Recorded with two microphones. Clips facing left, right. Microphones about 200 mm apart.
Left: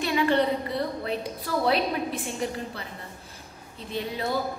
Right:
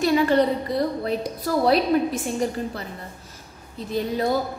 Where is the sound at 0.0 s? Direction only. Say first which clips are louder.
Right 5 dB; 40° right (ahead or behind).